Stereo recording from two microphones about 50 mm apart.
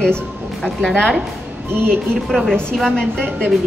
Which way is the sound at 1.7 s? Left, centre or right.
Right.